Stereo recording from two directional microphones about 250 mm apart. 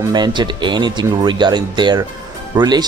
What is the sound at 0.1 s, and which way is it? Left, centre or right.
Speech, centre.